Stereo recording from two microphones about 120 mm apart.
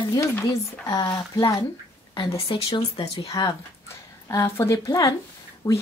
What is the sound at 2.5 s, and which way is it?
Speech, 45° left (ahead or behind).